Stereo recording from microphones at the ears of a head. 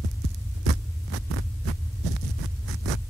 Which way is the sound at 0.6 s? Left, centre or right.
Right.